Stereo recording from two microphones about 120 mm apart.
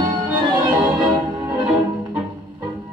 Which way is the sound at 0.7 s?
15° right (ahead or behind).